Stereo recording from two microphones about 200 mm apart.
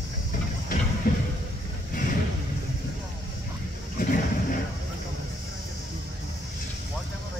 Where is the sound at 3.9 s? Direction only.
45° left (ahead or behind).